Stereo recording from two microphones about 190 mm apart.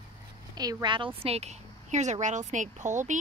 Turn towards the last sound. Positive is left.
turn(degrees=-40)  # may be behind; listen again after turning